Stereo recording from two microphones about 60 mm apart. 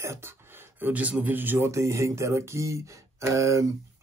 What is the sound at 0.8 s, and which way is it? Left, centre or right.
Speech, right.